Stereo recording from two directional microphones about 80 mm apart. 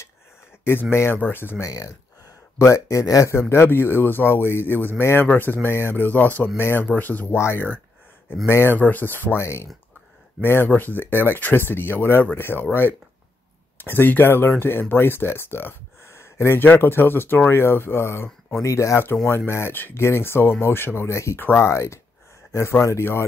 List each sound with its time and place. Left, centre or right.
0.7 s speech: left
1.6 s speech: left
7.3 s speech: left
13.7 s speech: left